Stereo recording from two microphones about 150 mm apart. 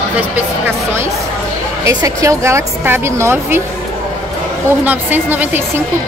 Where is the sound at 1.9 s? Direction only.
20° right (ahead or behind).